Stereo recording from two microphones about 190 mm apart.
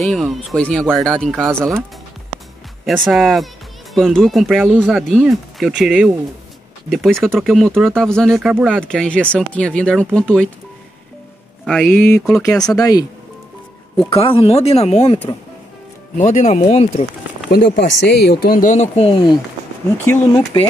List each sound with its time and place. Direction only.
0.0 s speech: centre (ahead or behind)
2.8 s speech: centre (ahead or behind)
8.5 s speech: 10° right (ahead or behind)
8.8 s speech: 5° left (ahead or behind)
11.6 s speech: 10° left (ahead or behind)
14.1 s speech: 30° left (ahead or behind)
17.5 s speech: 55° left (ahead or behind); by 19.3 s 25° left (ahead or behind)